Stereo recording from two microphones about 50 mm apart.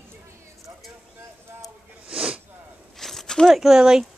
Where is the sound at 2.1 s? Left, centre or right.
Centre.